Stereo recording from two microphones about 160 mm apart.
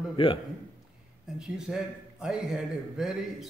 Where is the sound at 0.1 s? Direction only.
35° left (ahead or behind).